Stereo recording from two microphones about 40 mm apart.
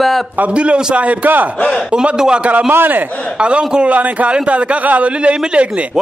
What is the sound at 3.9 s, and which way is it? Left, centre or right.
A man's voice, right.